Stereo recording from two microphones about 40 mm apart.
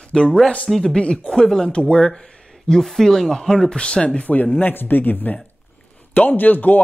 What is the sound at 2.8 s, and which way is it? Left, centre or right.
Speech, centre.